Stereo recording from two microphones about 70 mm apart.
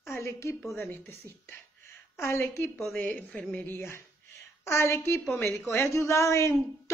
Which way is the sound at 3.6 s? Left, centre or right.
Left.